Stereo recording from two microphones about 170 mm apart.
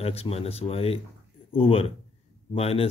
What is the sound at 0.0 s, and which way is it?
Speech, 35° left (ahead or behind).